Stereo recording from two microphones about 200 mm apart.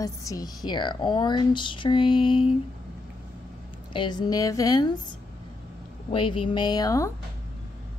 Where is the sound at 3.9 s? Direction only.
20° left (ahead or behind).